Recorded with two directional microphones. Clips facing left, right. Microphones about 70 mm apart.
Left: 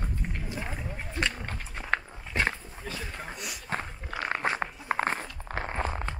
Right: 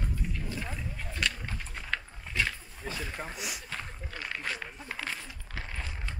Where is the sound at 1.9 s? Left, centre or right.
Left.